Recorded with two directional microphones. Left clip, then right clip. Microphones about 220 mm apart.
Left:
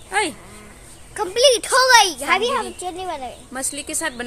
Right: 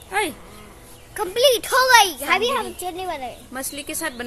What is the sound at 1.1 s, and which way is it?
A woman's voice, 15° left (ahead or behind).